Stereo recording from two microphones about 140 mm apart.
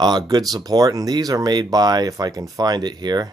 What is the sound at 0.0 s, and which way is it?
Speech, 30° right (ahead or behind).